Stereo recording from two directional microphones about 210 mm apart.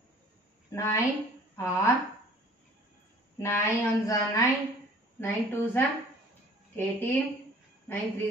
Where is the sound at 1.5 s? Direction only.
15° left (ahead or behind).